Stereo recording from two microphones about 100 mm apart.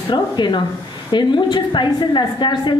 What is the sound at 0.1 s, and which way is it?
A woman's voice, 50° left (ahead or behind).